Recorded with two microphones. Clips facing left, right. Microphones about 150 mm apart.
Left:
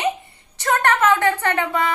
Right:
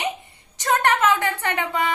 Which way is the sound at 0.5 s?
15° right (ahead or behind).